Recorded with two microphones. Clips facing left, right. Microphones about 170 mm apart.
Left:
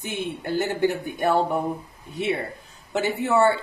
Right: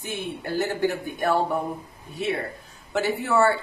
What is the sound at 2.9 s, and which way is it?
Speech, 20° left (ahead or behind).